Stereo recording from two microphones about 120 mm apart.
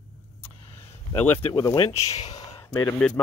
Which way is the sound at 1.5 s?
35° left (ahead or behind).